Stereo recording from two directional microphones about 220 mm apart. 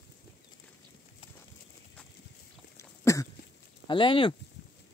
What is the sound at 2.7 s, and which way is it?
Cough, 15° left (ahead or behind).